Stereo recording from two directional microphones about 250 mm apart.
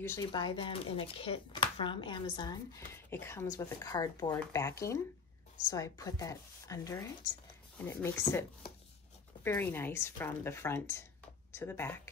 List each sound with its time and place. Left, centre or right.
0.0 s speech: centre